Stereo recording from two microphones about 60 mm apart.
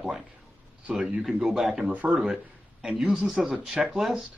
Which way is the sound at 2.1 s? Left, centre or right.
Centre.